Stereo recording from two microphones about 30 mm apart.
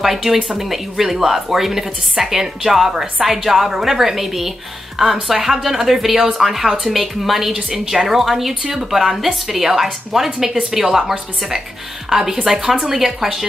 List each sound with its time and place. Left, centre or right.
0.0 s a woman's voice: centre
7.5 s a woman's voice: right
7.9 s a woman's voice: centre